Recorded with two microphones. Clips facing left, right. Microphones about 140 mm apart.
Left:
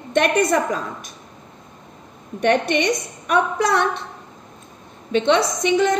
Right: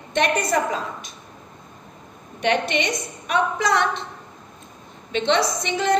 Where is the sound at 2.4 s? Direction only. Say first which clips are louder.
Left 4 dB; 45° left (ahead or behind).